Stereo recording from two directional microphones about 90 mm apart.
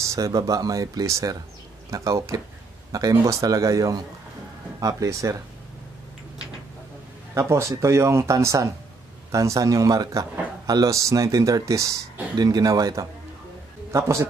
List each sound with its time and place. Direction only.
0.0 s speech: 40° right (ahead or behind)
7.3 s speech: 30° right (ahead or behind)
13.9 s speech: 35° right (ahead or behind)